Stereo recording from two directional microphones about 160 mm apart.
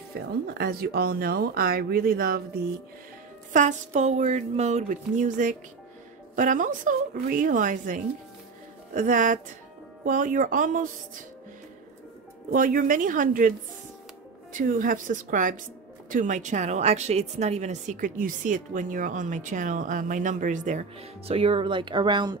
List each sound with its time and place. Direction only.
0.1 s speech: 80° right
3.5 s a woman's voice: 50° right (ahead or behind)
12.4 s a woman's voice: 60° right (ahead or behind)
14.5 s a woman's voice: 55° right (ahead or behind); by 22.4 s 25° right (ahead or behind)